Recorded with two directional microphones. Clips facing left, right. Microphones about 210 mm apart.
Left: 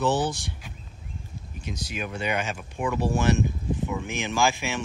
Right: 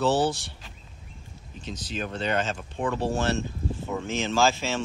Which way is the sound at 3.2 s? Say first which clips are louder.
Left 3 dB; 15° left (ahead or behind).